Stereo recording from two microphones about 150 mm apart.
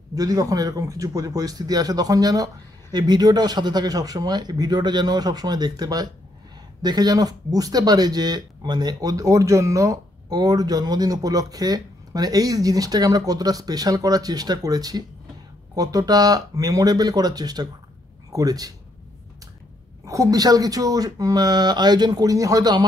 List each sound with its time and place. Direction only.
0.1 s speech: 25° right (ahead or behind)
20.1 s speech: 20° right (ahead or behind)